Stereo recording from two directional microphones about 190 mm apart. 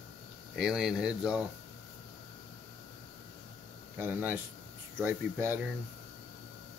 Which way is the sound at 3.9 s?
10° right (ahead or behind).